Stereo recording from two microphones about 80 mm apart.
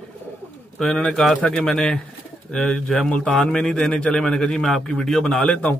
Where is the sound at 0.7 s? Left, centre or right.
Centre.